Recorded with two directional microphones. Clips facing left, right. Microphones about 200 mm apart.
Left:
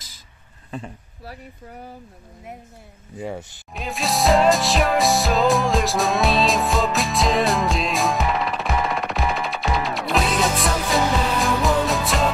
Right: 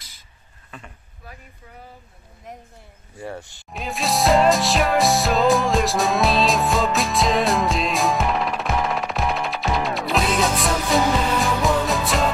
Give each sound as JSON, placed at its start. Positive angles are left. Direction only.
{"t": 0.7, "sound": "speech", "side_deg": 35}
{"t": 3.2, "sound": "speech", "side_deg": 20}
{"t": 3.7, "sound": "music", "side_deg": 0}